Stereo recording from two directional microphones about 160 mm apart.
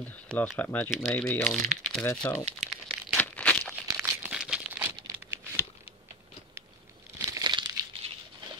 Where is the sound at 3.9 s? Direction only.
5° right (ahead or behind).